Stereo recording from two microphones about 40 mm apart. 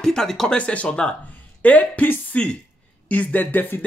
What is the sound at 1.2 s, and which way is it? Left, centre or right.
Speech, left.